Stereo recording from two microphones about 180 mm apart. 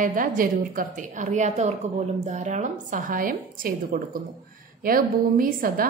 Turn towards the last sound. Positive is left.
turn(degrees=-50)  # may be behind; listen again after turning